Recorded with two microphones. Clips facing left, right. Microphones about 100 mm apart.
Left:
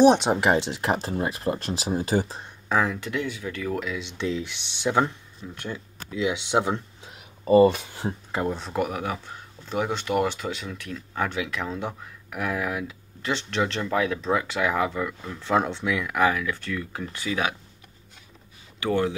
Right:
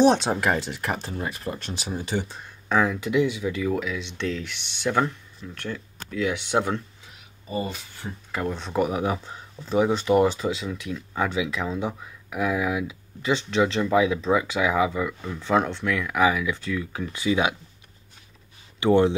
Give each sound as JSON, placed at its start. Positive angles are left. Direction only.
{"t": 0.0, "sound": "speech", "side_deg": 15}
{"t": 2.7, "sound": "speech", "side_deg": 0}
{"t": 3.7, "sound": "speech", "side_deg": 0}
{"t": 4.2, "sound": "speech", "side_deg": 10}
{"t": 7.4, "sound": "speech", "side_deg": 65}
{"t": 8.5, "sound": "speech", "side_deg": 10}
{"t": 8.7, "sound": "speech", "side_deg": -20}
{"t": 17.1, "sound": "speech", "side_deg": -15}
{"t": 18.8, "sound": "speech", "side_deg": -20}